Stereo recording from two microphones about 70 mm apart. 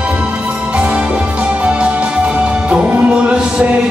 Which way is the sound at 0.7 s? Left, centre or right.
Centre.